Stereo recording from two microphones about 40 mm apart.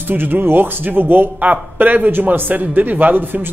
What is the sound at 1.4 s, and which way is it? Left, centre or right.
A man's voice, right.